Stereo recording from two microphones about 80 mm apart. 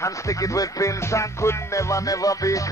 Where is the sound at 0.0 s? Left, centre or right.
Left.